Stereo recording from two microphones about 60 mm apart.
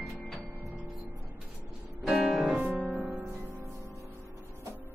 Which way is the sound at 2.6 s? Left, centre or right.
Right.